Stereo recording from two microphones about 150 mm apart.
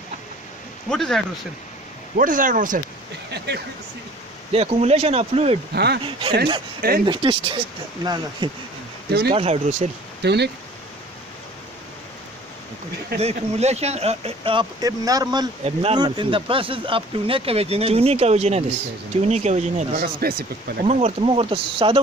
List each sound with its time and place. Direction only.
0.8 s speech: 5° left (ahead or behind)
2.1 s speech: 60° right (ahead or behind)
4.5 s speech: 40° right (ahead or behind)
5.7 s speech: 90° right
6.0 s speech: 35° right (ahead or behind)
9.3 s speech: 45° right (ahead or behind)
10.2 s speech: 90° right
13.2 s speech: 45° right (ahead or behind); by 15.5 s 25° right (ahead or behind)
15.6 s speech: 40° right (ahead or behind)
20.0 s speech: 90° right
20.8 s speech: 45° right (ahead or behind)